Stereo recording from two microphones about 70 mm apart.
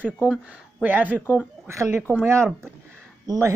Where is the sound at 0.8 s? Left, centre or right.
Right.